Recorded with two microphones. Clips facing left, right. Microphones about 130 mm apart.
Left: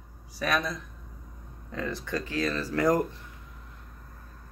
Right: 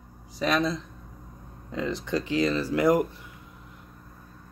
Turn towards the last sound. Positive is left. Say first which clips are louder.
# right 3 dB
turn(degrees=-10)  # may be behind; listen again after turning